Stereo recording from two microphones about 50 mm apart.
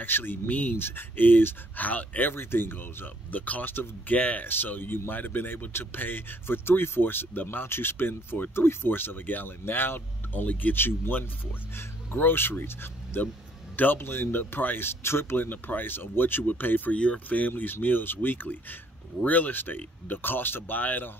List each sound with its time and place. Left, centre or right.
0.0 s speech: left
0.7 s speech: left
2.3 s speech: left
4.5 s speech: left
10.8 s speech: left
15.3 s speech: left
16.9 s speech: left